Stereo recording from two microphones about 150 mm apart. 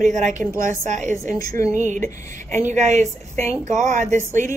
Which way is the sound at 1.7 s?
55° right (ahead or behind).